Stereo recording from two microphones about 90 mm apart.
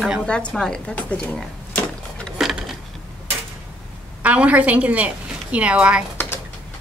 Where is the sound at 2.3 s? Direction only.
Centre (ahead or behind).